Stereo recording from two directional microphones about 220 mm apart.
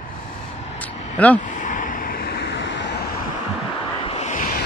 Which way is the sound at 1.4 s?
35° left (ahead or behind).